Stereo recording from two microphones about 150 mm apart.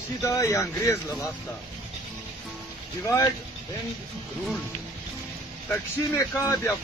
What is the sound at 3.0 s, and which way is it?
Speech, 20° left (ahead or behind).